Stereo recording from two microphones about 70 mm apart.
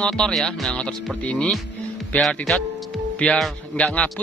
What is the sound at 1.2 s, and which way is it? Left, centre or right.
Speech, centre.